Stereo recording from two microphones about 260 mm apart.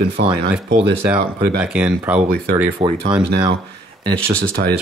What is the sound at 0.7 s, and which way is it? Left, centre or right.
Speech, centre.